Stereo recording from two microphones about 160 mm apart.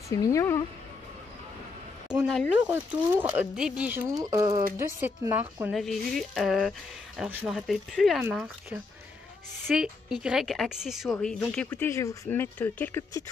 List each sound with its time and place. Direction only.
0.1 s speech: 20° left (ahead or behind)
2.0 s speech: 5° right (ahead or behind)
4.1 s speech: 20° right (ahead or behind)
5.7 s a woman's voice: centre (ahead or behind)